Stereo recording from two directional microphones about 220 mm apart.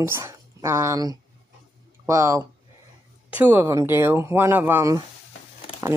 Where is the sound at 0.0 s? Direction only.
15° right (ahead or behind).